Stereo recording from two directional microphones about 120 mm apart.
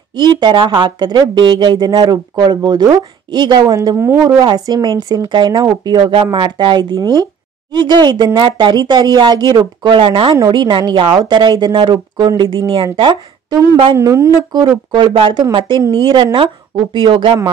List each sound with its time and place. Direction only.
0.1 s speech: 40° right (ahead or behind); by 4.4 s 20° right (ahead or behind)
4.4 s speech: 35° right (ahead or behind)
13.9 s speech: 25° right (ahead or behind)
14.9 s speech: 40° right (ahead or behind)